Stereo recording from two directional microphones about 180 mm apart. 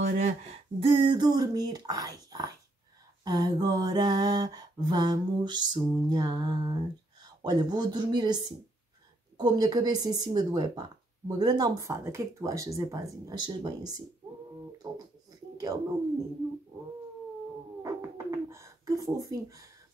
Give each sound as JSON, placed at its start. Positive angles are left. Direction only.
{"t": 0.0, "sound": "a woman's voice", "side_deg": -40}
{"t": 9.4, "sound": "a woman's voice", "side_deg": -20}
{"t": 15.5, "sound": "a sound", "side_deg": -20}
{"t": 17.8, "sound": "bird", "side_deg": -15}